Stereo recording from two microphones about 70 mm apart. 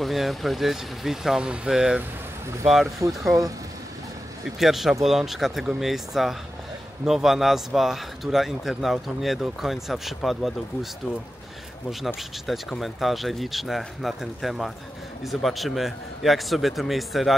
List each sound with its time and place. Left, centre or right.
0.0 s speech: centre
4.6 s speech: centre
12.4 s speech: centre